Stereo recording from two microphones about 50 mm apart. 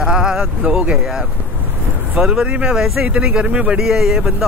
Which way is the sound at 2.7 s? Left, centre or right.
Centre.